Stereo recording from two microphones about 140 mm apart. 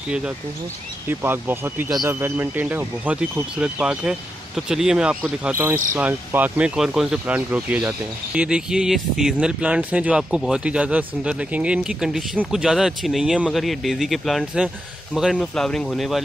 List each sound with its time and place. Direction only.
1.0 s speech: 15° right (ahead or behind)